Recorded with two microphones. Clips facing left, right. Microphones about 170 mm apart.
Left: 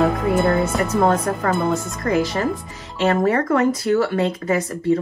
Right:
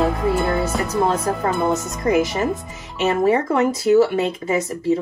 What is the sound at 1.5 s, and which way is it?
Speech, 20° right (ahead or behind).